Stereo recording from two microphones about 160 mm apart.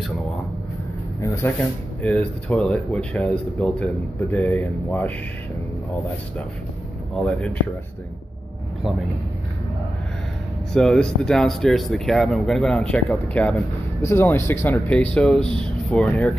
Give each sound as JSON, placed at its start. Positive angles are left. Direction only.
{"t": 1.2, "sound": "speech", "side_deg": 15}
{"t": 7.2, "sound": "speech", "side_deg": 5}
{"t": 10.7, "sound": "speech", "side_deg": 5}